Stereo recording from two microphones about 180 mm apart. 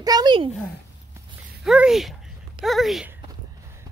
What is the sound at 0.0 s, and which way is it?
Speech, 20° right (ahead or behind).